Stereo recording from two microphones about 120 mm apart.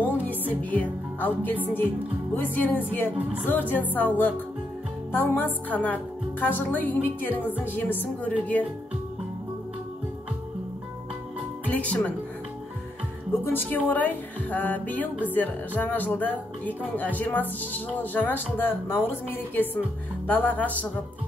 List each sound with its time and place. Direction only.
0.0 s music: 15° left (ahead or behind)
2.3 s speech: 15° left (ahead or behind)
11.6 s speech: 10° left (ahead or behind)
13.3 s speech: 15° left (ahead or behind)